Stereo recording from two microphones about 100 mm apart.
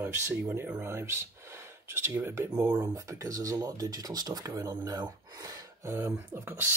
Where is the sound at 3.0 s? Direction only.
35° right (ahead or behind).